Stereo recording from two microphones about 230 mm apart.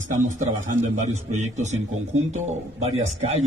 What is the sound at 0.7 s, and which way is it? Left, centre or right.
Speech, right.